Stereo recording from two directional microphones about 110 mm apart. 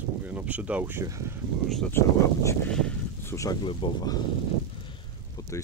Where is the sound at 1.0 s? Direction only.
25° right (ahead or behind).